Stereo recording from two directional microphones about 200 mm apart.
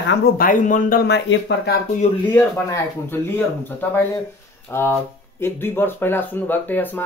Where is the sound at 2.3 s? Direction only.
10° left (ahead or behind).